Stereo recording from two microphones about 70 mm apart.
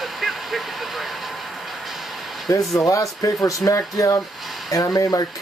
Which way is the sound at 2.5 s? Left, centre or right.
Left.